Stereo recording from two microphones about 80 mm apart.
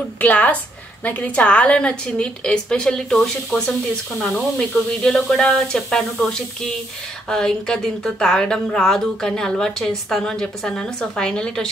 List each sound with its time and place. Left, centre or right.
0.2 s a woman's voice: centre